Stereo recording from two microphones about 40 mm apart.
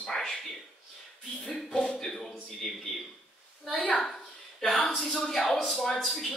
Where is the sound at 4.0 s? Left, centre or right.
Centre.